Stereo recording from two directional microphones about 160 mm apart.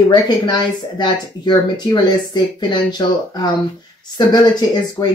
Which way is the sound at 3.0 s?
25° left (ahead or behind).